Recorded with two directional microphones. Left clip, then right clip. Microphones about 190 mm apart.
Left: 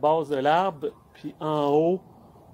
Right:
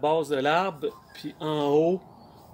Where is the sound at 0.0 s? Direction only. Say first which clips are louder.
Left 2 dB; 15° right (ahead or behind).